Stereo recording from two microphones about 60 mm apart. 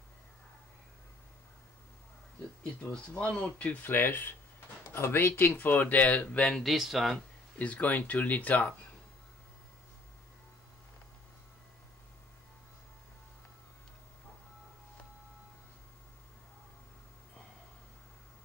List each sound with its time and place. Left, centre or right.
2.9 s speech: left
3.7 s speech: left
6.5 s speech: centre
7.5 s speech: left